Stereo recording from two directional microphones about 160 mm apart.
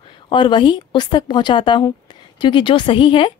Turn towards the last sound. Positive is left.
turn(degrees=30)  # may be behind; listen again after turning